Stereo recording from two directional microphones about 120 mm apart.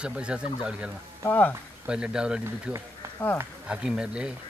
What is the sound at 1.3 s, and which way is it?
Speech, 15° left (ahead or behind).